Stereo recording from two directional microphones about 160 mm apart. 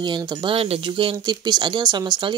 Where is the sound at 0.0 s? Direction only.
25° right (ahead or behind).